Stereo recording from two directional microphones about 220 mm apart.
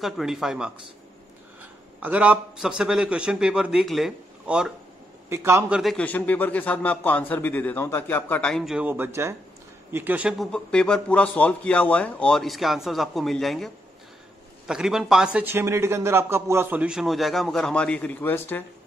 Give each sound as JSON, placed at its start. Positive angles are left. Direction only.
{"t": 0.0, "sound": "a man's voice", "side_deg": 0}
{"t": 5.8, "sound": "a man's voice", "side_deg": 5}
{"t": 14.7, "sound": "a man's voice", "side_deg": 0}